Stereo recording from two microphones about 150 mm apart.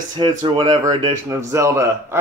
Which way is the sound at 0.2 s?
25° right (ahead or behind).